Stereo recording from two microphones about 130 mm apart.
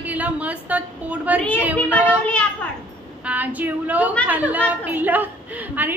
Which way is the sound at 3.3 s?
10° right (ahead or behind).